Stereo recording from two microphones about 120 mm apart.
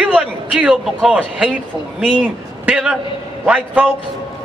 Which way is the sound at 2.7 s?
5° right (ahead or behind).